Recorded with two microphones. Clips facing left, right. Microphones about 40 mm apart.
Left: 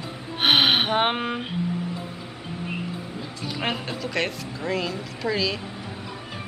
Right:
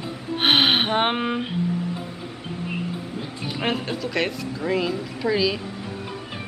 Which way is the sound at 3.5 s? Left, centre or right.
Centre.